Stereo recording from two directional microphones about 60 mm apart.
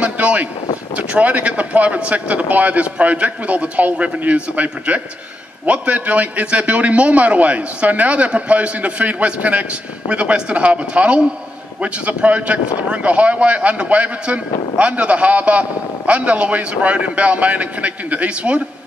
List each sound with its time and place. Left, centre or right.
0.0 s a man's voice: right